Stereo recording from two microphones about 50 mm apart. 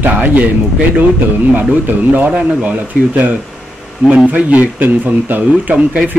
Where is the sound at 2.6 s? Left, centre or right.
Right.